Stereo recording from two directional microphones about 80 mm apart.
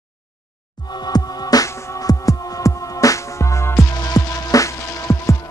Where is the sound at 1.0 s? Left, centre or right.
Left.